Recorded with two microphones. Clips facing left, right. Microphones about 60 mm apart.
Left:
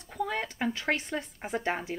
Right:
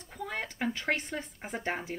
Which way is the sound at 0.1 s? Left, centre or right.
Left.